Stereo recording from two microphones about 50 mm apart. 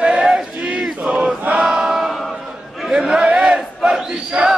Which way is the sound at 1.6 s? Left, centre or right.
Centre.